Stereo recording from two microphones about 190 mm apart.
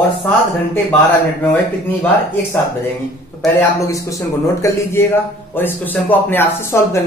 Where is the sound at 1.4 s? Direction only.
10° left (ahead or behind).